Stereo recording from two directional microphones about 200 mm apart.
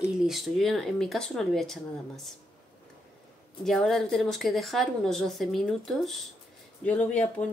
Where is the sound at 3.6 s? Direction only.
Centre (ahead or behind).